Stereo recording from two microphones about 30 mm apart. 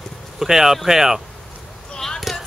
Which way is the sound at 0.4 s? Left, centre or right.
Centre.